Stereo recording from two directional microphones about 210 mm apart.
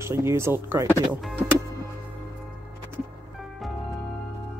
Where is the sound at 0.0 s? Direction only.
15° right (ahead or behind).